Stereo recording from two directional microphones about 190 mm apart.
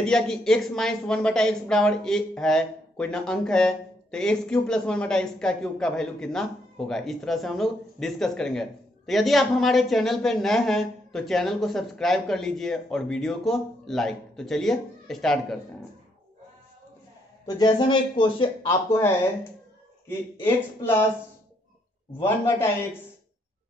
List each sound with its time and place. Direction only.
0.0 s speech: 5° left (ahead or behind)
17.5 s speech: 20° left (ahead or behind)